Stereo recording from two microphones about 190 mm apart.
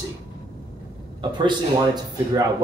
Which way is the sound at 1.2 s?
25° right (ahead or behind).